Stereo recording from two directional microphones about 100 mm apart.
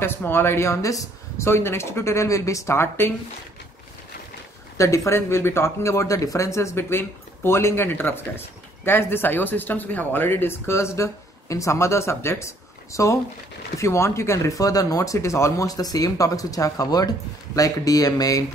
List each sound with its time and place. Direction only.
0.0 s speech: 20° left (ahead or behind)
4.7 s speech: 30° left (ahead or behind)